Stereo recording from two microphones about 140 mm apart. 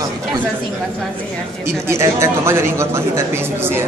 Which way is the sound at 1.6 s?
20° right (ahead or behind).